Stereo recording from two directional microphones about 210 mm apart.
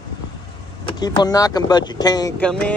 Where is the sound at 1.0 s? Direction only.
20° left (ahead or behind).